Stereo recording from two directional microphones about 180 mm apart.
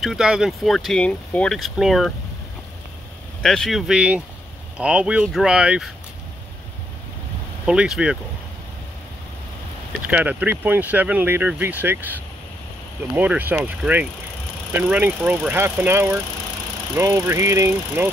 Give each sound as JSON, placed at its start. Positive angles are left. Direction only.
{"t": 0.0, "sound": "speech", "side_deg": -5}
{"t": 3.4, "sound": "speech", "side_deg": 0}
{"t": 7.6, "sound": "speech", "side_deg": -5}
{"t": 10.0, "sound": "speech", "side_deg": -10}